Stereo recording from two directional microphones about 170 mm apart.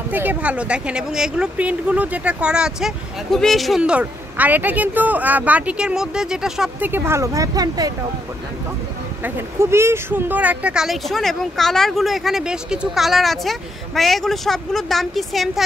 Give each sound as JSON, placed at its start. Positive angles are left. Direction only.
{"t": 0.1, "sound": "speech", "side_deg": -10}
{"t": 9.2, "sound": "speech", "side_deg": -15}